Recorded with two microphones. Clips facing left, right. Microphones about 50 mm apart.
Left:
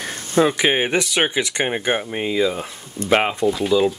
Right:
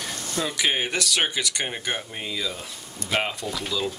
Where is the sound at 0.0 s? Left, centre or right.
Left.